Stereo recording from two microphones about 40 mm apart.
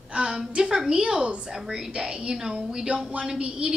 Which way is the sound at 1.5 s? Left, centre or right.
Centre.